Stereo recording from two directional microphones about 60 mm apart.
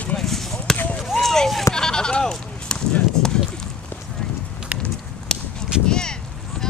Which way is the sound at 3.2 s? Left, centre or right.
Centre.